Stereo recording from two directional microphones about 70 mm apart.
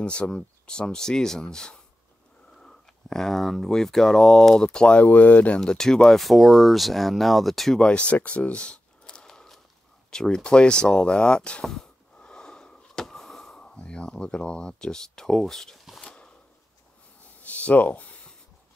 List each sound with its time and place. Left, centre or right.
0.0 s speech: centre
5.6 s speech: centre
7.8 s a sound: centre
10.1 s speech: centre
11.6 s a sound: centre
17.5 s speech: left